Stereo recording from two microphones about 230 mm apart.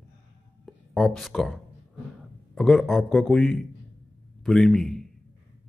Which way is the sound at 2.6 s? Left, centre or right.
Centre.